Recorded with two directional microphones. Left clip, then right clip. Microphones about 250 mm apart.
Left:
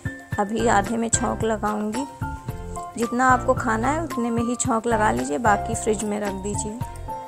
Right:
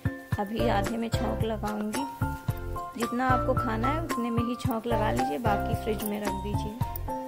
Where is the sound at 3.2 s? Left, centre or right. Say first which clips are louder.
Left 8 dB; centre.